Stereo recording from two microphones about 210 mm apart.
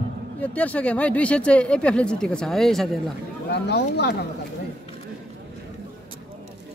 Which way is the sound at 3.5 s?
55° left (ahead or behind).